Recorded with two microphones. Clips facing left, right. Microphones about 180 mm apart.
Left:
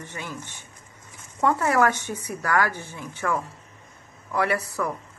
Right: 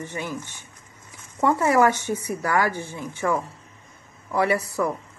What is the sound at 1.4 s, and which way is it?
Speech, 10° right (ahead or behind).